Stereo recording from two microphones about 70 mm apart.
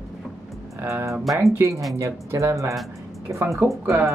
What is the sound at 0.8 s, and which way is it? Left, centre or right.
Speech, right.